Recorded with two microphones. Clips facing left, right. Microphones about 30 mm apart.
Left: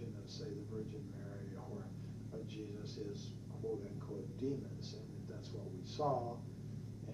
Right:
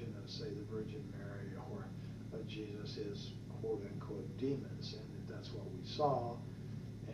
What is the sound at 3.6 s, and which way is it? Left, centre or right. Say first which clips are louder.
Speech: right 2 dB; centre.